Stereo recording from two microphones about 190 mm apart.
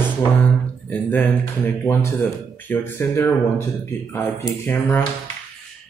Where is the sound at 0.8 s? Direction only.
10° left (ahead or behind).